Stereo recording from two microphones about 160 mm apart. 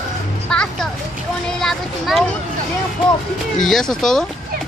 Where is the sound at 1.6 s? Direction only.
Centre (ahead or behind).